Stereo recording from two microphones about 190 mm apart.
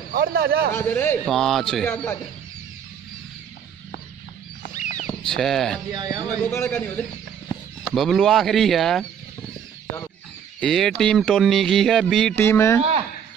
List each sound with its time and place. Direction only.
0.1 s a man's voice: 55° right (ahead or behind)
0.7 s speech: 10° left (ahead or behind)
4.7 s wild animals: 40° left (ahead or behind)
5.0 s speech: centre (ahead or behind)
5.9 s speech: 20° right (ahead or behind)
6.6 s speech: 10° left (ahead or behind)
10.6 s speech: centre (ahead or behind)